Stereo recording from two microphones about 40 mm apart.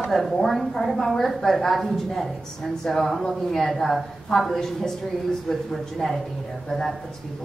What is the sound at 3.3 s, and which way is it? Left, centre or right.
A woman's voice, centre.